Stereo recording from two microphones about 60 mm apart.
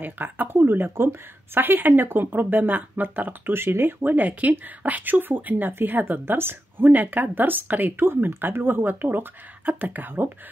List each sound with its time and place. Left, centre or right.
0.0 s a woman's voice: right